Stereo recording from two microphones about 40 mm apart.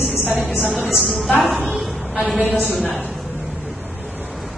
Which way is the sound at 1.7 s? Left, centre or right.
Centre.